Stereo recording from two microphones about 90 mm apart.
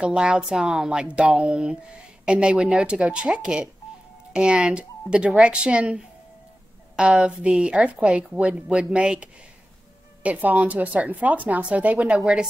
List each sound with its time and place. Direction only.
0.0 s a woman's voice: 10° right (ahead or behind)